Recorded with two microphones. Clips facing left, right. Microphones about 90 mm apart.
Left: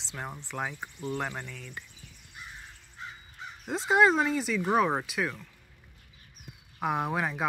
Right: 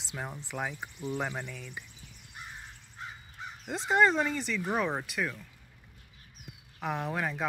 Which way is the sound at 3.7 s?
5° left (ahead or behind).